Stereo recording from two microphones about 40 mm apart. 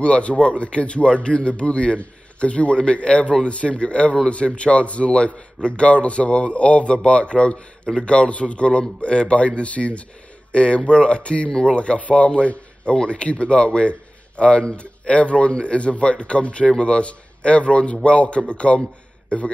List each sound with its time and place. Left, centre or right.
0.0 s a man's voice: left